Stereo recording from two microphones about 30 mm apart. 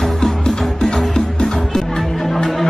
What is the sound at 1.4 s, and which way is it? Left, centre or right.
Music, centre.